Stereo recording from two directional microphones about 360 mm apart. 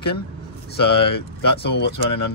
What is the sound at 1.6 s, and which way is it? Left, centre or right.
Speech, left.